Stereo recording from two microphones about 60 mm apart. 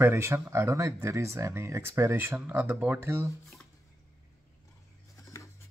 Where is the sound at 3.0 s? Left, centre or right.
Right.